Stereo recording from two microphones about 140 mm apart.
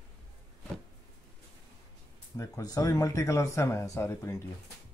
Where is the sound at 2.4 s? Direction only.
25° left (ahead or behind).